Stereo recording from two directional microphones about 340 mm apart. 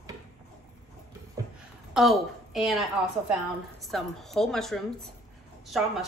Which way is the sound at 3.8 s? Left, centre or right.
Centre.